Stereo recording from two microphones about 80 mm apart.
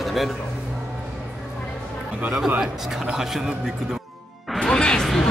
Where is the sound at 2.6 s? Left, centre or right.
Centre.